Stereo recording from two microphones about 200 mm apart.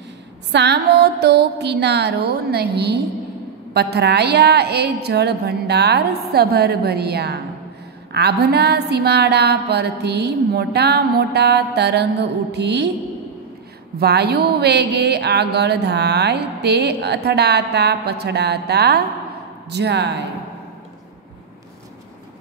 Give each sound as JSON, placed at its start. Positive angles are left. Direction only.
{"t": 0.5, "sound": "speech", "side_deg": -55}
{"t": 13.9, "sound": "speech", "side_deg": -55}